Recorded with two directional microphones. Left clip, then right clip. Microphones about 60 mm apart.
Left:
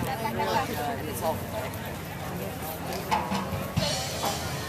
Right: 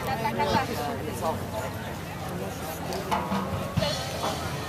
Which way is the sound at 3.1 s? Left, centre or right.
Left.